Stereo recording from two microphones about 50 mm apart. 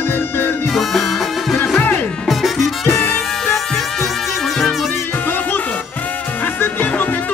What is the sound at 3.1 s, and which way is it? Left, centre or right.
Music, centre.